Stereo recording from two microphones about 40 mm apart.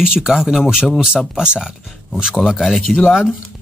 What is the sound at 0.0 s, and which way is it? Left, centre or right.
Speech, centre.